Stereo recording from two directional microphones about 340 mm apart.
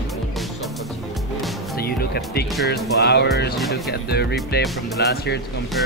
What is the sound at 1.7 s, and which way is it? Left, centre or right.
Speech, left.